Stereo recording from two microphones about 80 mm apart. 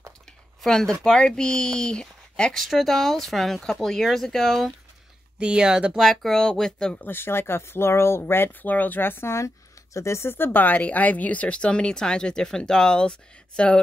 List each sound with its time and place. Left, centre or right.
0.6 s speech: centre
5.4 s speech: centre
5.9 s speech: centre
7.0 s speech: left